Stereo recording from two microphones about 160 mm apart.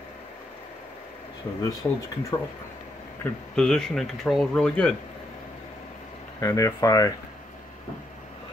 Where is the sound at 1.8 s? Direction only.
10° left (ahead or behind).